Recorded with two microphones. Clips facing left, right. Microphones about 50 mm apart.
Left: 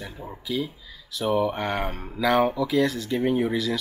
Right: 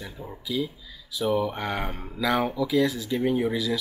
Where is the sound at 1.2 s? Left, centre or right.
Centre.